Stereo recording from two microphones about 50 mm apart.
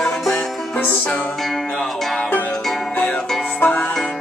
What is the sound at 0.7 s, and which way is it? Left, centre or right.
Music, left.